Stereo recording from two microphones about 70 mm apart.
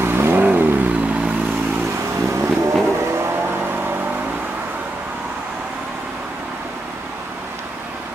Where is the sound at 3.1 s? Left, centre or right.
Right.